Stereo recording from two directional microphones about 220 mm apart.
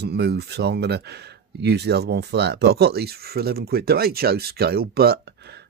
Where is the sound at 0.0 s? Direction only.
45° right (ahead or behind).